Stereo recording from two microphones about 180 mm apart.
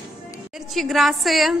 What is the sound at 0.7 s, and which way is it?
Speech, centre (ahead or behind).